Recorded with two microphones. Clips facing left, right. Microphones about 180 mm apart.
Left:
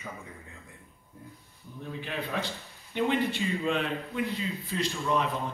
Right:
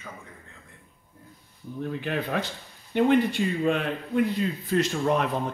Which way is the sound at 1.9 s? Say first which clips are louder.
Right 5 dB; 55° right (ahead or behind).